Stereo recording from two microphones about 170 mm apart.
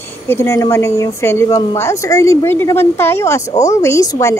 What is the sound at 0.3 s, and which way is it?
Speech, 15° left (ahead or behind).